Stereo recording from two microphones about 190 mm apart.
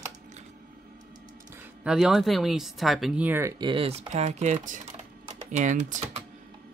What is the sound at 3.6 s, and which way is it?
Speech, 30° right (ahead or behind).